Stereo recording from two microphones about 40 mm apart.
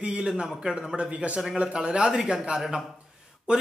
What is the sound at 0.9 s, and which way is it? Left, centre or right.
Speech, right.